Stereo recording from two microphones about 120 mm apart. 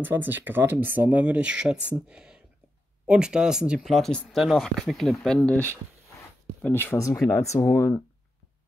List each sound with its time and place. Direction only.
0.0 s speech: 15° right (ahead or behind); by 8.0 s 20° left (ahead or behind)